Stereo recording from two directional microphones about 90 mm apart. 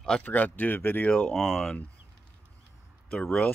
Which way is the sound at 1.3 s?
Centre (ahead or behind).